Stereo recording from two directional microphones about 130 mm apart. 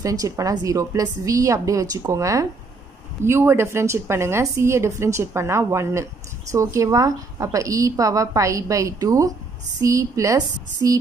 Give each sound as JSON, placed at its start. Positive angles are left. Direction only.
{"t": 0.0, "sound": "a woman's voice", "side_deg": -25}